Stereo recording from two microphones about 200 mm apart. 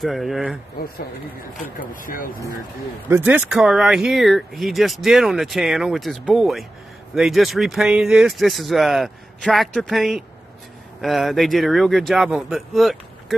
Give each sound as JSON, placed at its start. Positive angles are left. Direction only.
{"t": 0.0, "sound": "speech", "side_deg": 0}
{"t": 1.8, "sound": "speech", "side_deg": 45}
{"t": 3.1, "sound": "speech", "side_deg": -10}